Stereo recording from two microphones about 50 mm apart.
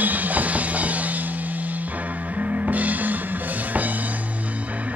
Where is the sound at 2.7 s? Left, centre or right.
Right.